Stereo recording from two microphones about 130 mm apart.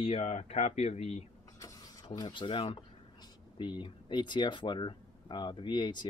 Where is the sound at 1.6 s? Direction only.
25° left (ahead or behind).